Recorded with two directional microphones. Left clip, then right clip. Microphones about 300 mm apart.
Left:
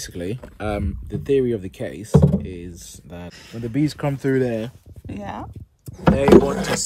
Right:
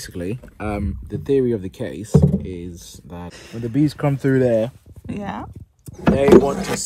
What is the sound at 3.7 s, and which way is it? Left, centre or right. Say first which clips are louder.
Speech: right 3 dB; centre.